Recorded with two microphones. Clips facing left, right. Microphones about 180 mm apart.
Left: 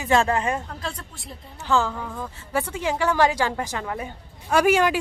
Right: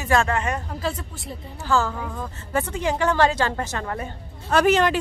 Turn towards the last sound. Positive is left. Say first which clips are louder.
# even
turn(degrees=10)  # may be behind; listen again after turning